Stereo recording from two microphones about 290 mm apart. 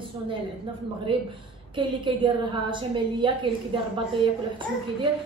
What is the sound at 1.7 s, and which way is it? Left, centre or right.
A woman's voice, centre.